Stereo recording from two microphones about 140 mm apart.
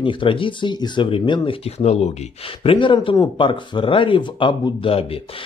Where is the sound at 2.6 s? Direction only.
35° left (ahead or behind).